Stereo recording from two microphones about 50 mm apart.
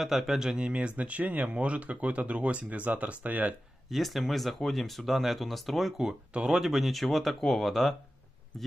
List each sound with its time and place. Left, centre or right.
0.0 s speech: centre
0.7 s speech: right
3.9 s speech: centre